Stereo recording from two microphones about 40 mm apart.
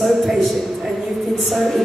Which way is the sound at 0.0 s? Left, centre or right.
Centre.